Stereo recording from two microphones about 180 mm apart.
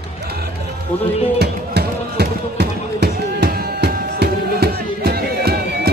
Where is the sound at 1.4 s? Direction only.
65° right (ahead or behind).